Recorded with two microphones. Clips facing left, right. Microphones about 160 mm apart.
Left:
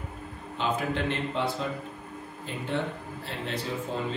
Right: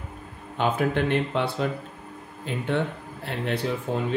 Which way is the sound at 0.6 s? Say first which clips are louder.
Right 5 dB; 55° right (ahead or behind).